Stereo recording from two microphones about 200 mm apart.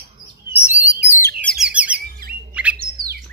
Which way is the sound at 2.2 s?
45° right (ahead or behind).